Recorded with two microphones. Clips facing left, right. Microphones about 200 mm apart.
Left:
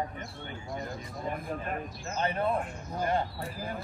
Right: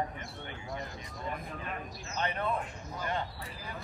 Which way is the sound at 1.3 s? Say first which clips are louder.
Left 6 dB; 45° left (ahead or behind).